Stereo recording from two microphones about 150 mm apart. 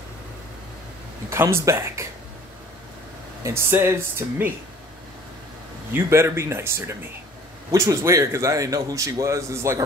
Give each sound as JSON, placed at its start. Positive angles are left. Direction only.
{"t": 1.3, "sound": "speech", "side_deg": -15}
{"t": 3.4, "sound": "speech", "side_deg": -15}
{"t": 5.9, "sound": "a man's voice", "side_deg": -20}